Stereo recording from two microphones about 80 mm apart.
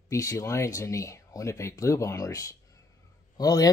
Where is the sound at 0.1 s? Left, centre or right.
Left.